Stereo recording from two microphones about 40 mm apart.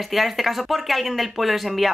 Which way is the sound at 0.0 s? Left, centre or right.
Centre.